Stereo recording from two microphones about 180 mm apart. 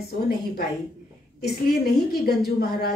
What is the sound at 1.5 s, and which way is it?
Speech, 65° left (ahead or behind).